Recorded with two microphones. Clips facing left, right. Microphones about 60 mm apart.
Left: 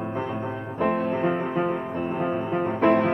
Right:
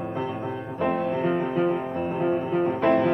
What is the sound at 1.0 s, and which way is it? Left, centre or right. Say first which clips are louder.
Music: even; left.